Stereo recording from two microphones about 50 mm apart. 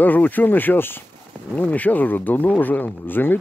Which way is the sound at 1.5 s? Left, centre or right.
Left.